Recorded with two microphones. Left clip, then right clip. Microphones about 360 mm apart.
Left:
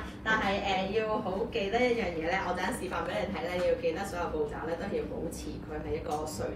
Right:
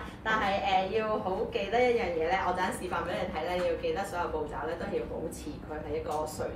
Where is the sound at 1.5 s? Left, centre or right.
Right.